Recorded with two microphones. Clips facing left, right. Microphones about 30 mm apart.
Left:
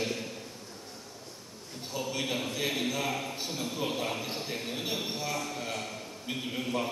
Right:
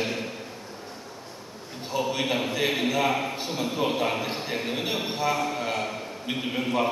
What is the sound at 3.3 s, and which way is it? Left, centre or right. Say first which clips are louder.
A man's voice: right 6 dB; centre.